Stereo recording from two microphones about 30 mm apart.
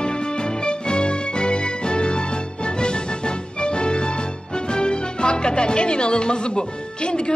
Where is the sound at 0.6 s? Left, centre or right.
Left.